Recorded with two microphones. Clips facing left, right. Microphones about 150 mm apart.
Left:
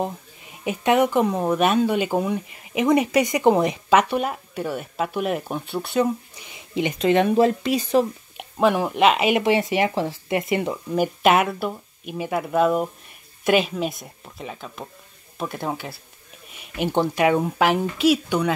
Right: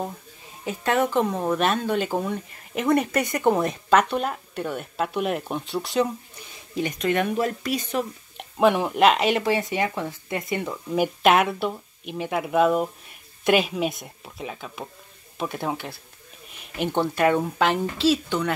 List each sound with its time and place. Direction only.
0.7 s speech: 15° left (ahead or behind)
6.5 s speech: 20° left (ahead or behind)
8.4 s speech: centre (ahead or behind)
9.4 s speech: 25° left (ahead or behind)
11.0 s speech: centre (ahead or behind)
16.8 s speech: 15° left (ahead or behind)